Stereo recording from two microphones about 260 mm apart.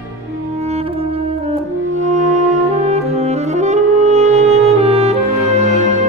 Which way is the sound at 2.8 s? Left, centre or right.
Right.